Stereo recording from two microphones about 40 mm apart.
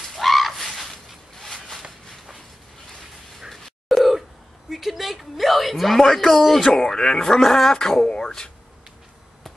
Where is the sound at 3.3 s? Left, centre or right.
Centre.